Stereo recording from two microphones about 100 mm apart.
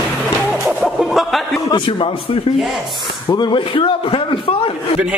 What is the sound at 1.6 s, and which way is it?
Speech, 55° left (ahead or behind).